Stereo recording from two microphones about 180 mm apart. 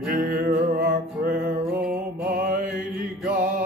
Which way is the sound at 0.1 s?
55° right (ahead or behind).